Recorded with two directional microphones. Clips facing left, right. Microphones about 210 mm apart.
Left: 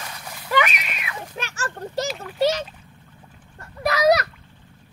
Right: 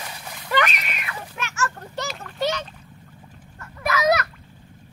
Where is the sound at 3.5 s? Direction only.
35° left (ahead or behind).